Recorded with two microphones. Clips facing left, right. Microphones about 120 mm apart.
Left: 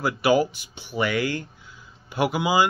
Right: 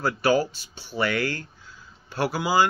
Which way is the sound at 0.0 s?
15° left (ahead or behind).